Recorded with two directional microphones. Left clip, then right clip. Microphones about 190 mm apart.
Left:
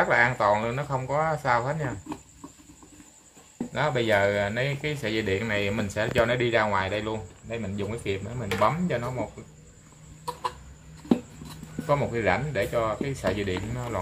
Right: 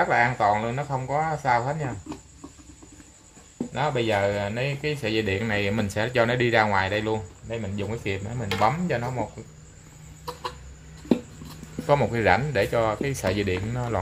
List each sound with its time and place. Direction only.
0.0 s speech: 20° right (ahead or behind)
3.7 s speech: 10° right (ahead or behind); by 9.2 s 30° right (ahead or behind)
11.8 s speech: 45° right (ahead or behind)